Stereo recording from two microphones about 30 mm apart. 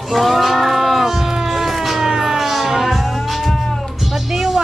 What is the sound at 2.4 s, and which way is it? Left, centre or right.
Music, centre.